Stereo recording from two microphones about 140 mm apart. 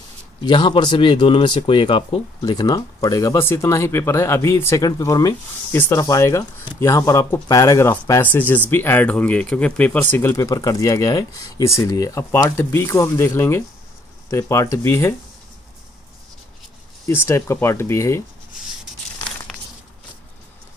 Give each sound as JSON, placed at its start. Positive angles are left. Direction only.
{"t": 0.4, "sound": "speech", "side_deg": 35}
{"t": 2.5, "sound": "speech", "side_deg": 25}
{"t": 17.0, "sound": "speech", "side_deg": 20}